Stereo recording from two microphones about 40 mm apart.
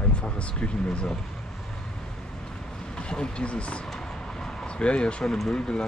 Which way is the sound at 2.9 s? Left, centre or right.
Left.